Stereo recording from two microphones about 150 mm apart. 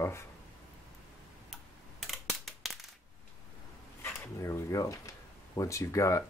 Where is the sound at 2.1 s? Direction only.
Centre (ahead or behind).